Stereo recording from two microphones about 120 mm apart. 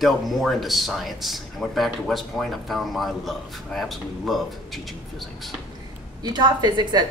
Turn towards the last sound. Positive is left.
turn(degrees=-35)  # may be behind; listen again after turning